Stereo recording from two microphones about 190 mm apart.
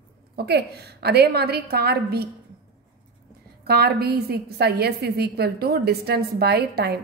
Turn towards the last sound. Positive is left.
turn(degrees=-55)  # may be behind; listen again after turning